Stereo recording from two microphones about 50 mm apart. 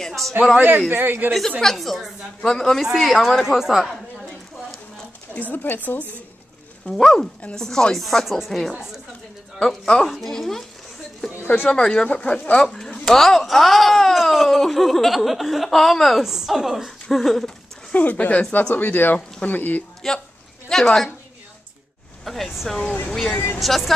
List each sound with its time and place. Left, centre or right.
0.0 s a sound: centre
0.7 s a man's voice: right
1.6 s speech: centre
2.8 s speech: centre
3.1 s speech: centre
3.4 s speech: centre
5.3 s speech: left
6.9 s speech: centre
12.1 s speech: left
12.7 s speech: centre
17.9 s speech: left
20.0 s a woman's voice: centre
22.2 s speech: centre
23.6 s speech: centre